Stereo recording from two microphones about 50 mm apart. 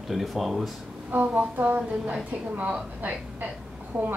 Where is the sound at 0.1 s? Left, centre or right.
Centre.